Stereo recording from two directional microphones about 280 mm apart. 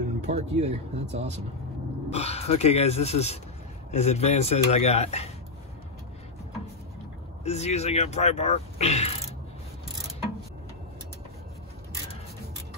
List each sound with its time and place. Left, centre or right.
0.3 s speech: right
2.0 s speech: left
7.4 s speech: left